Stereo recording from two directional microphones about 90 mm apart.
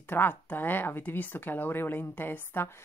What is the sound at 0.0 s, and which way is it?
A woman's voice, 20° left (ahead or behind).